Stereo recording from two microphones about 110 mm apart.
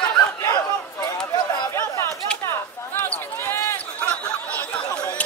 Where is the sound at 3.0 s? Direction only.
15° left (ahead or behind).